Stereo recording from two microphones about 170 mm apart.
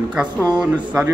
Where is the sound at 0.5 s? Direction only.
5° right (ahead or behind).